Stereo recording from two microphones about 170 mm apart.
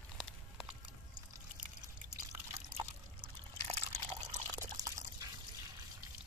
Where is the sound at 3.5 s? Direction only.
40° right (ahead or behind).